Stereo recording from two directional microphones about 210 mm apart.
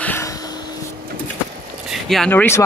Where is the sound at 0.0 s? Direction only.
10° left (ahead or behind).